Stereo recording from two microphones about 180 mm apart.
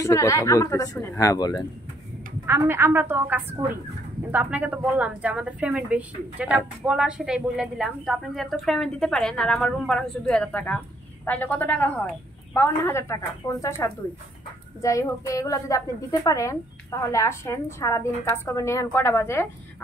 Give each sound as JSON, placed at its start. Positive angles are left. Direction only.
{"t": 0.0, "sound": "a woman's voice", "side_deg": 15}
{"t": 2.4, "sound": "a woman's voice", "side_deg": -15}